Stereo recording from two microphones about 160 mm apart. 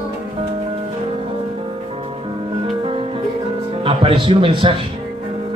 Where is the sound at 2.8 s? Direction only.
35° right (ahead or behind).